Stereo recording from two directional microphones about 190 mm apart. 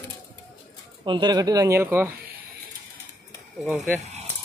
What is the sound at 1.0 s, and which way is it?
Speech, 25° right (ahead or behind).